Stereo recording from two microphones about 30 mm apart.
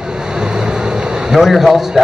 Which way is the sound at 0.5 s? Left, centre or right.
Right.